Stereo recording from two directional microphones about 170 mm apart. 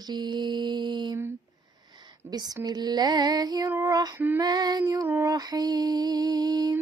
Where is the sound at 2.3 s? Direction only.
20° right (ahead or behind).